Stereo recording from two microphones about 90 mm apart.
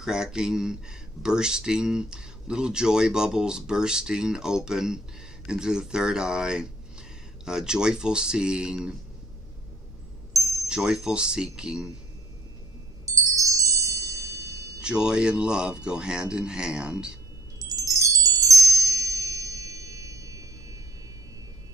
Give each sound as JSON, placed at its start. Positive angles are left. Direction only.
{"t": 0.0, "sound": "speech", "side_deg": -5}
{"t": 10.3, "sound": "chime", "side_deg": -40}
{"t": 10.7, "sound": "speech", "side_deg": -10}
{"t": 13.0, "sound": "chime", "side_deg": -40}
{"t": 14.8, "sound": "speech", "side_deg": -10}
{"t": 17.6, "sound": "music", "side_deg": -40}